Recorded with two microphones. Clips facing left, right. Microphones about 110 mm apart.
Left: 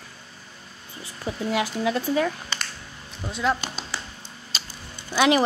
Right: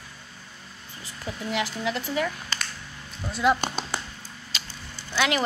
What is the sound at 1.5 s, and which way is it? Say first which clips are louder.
Speech: left 3 dB; 20° left (ahead or behind).